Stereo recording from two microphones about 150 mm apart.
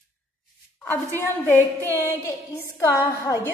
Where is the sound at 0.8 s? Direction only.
15° left (ahead or behind).